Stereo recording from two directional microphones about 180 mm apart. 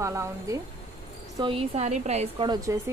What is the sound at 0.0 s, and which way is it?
Speech, 15° right (ahead or behind).